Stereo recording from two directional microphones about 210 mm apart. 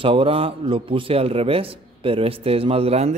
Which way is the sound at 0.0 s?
25° right (ahead or behind).